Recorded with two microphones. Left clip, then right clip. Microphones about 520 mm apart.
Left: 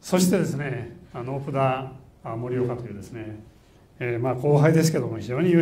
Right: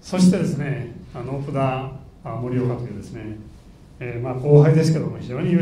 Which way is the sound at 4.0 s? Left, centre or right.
Left.